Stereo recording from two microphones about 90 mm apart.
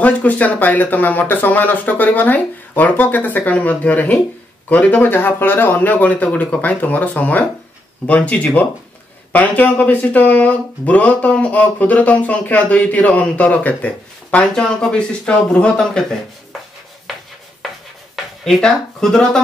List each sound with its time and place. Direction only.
0.0 s speech: 15° left (ahead or behind)
17.6 s a sound: centre (ahead or behind)
18.1 s speech: 5° left (ahead or behind)